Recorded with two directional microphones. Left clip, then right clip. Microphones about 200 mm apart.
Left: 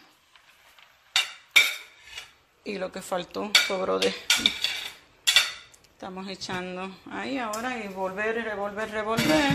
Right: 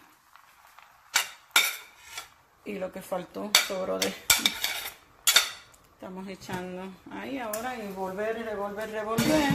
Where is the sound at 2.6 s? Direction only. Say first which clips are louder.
Left 3 dB; 15° left (ahead or behind).